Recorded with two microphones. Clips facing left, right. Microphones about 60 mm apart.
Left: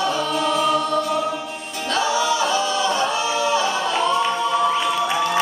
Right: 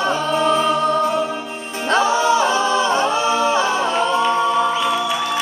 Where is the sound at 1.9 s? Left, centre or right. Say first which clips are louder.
Right 5 dB; right.